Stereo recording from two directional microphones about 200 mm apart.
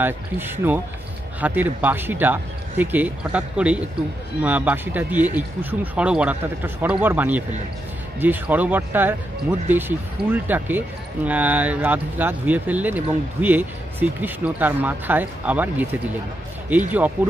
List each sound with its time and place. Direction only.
0.0 s speech: 10° right (ahead or behind)